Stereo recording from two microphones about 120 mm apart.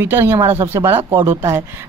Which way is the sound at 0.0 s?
20° right (ahead or behind).